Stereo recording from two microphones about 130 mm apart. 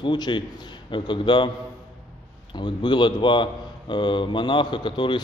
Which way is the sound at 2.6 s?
35° left (ahead or behind).